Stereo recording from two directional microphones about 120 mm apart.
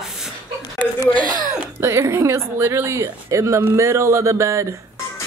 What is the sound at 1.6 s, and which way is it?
Speech, 20° right (ahead or behind).